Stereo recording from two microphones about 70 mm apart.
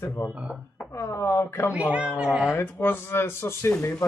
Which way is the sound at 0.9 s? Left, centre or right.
Left.